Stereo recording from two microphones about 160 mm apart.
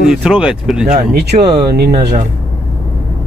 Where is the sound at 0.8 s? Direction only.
80° right.